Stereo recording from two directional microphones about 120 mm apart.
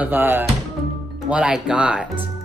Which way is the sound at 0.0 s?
15° right (ahead or behind).